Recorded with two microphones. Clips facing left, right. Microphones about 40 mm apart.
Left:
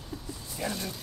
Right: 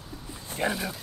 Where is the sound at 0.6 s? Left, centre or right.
Right.